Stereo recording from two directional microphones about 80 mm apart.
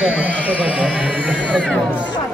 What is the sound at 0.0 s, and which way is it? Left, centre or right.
Speech, centre.